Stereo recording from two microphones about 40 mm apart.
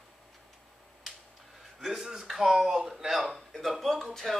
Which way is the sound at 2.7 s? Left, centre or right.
Centre.